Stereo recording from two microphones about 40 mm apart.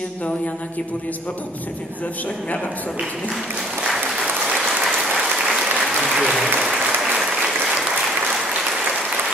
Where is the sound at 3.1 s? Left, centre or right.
Centre.